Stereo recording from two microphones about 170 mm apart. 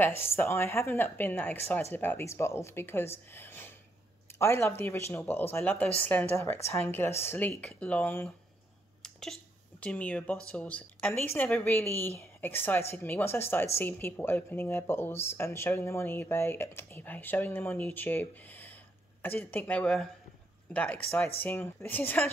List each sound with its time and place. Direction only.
0.0 s speech: 15° left (ahead or behind)